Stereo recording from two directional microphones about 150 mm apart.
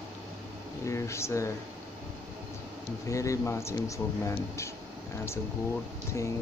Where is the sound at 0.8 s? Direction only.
20° left (ahead or behind).